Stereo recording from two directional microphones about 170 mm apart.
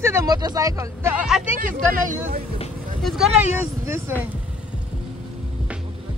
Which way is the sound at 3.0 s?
Centre (ahead or behind).